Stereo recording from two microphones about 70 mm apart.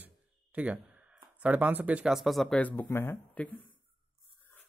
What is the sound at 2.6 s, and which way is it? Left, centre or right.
Speech, left.